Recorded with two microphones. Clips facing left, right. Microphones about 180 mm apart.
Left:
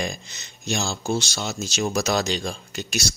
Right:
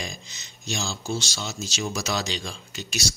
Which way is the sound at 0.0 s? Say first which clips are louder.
Left 7 dB; 55° left (ahead or behind).